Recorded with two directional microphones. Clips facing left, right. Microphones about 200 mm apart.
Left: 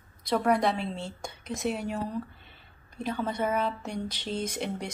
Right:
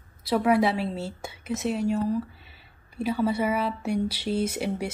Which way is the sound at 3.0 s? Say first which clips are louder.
Right 5 dB; 10° right (ahead or behind).